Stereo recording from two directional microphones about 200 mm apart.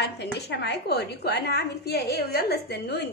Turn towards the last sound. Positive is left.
turn(degrees=55)  # may be behind; listen again after turning